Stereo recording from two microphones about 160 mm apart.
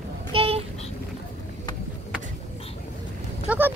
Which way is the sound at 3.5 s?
10° right (ahead or behind).